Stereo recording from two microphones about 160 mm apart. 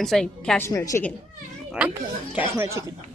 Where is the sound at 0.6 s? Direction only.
20° left (ahead or behind).